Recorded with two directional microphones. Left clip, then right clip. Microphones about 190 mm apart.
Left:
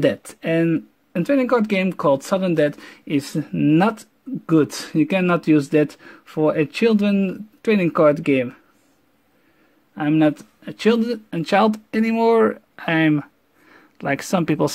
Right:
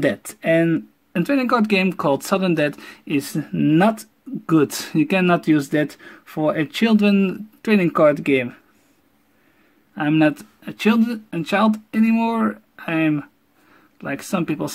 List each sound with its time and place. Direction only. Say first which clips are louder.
0.0 s speech: left 1 dB; 20° left (ahead or behind)
7.7 s speech: right 1 dB; 15° left (ahead or behind)
9.9 s speech: even; 15° left (ahead or behind); by 14.7 s 30° left (ahead or behind)